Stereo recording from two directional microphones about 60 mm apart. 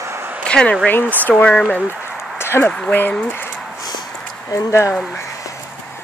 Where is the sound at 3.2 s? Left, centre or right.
Left.